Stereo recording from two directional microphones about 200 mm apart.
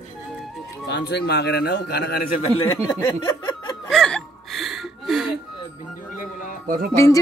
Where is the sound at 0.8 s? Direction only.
60° left (ahead or behind).